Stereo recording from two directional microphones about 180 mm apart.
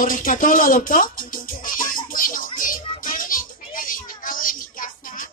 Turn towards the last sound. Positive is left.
turn(degrees=50)  # may be behind; listen again after turning